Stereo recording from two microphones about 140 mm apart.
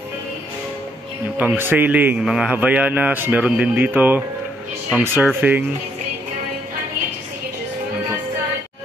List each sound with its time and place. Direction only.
1.6 s speech: 15° right (ahead or behind)